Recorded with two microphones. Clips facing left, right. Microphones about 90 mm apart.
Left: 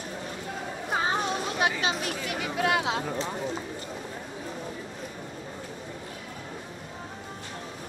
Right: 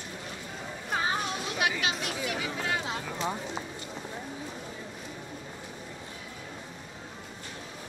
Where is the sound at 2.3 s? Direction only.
60° left (ahead or behind).